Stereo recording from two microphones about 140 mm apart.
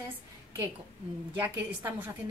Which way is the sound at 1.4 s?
15° right (ahead or behind).